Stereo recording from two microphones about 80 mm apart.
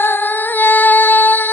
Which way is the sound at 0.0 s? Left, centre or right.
Left.